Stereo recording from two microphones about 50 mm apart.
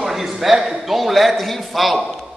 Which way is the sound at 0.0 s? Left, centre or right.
Centre.